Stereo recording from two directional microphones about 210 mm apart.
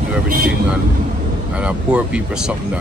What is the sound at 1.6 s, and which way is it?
Speech, 5° right (ahead or behind).